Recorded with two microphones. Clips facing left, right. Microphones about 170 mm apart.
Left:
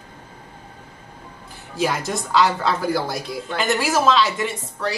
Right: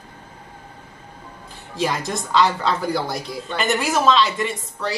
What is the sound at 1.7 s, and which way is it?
A woman's voice, 5° left (ahead or behind).